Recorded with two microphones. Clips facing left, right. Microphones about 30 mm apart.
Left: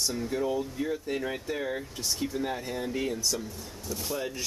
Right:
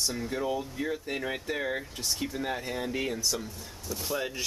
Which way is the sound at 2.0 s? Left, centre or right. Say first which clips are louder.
Left 3 dB; centre.